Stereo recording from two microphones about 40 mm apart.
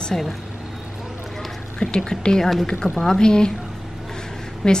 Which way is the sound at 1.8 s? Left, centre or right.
Centre.